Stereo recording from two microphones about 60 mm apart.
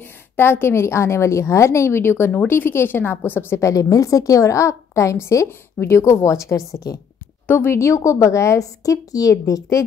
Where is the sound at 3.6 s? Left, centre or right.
Left.